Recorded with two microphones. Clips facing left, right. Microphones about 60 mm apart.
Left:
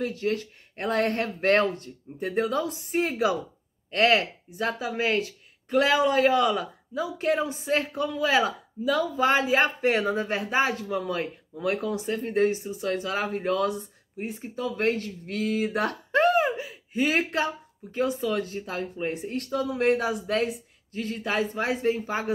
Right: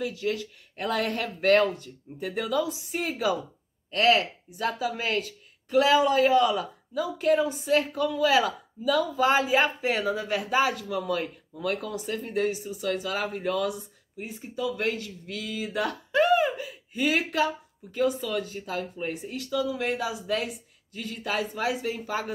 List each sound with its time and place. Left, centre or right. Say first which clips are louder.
0.0 s speech: left 2 dB; left
16.5 s a sound: left 4 dB; left
17.9 s speech: even; left
19.2 s speech: right 3 dB; left